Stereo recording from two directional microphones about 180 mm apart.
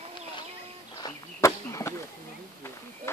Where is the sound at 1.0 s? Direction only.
15° left (ahead or behind).